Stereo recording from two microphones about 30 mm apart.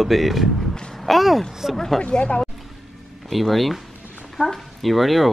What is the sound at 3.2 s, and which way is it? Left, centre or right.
Speech, centre.